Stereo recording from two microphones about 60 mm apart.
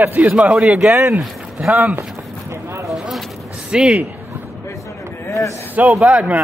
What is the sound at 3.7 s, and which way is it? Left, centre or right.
Speech, centre.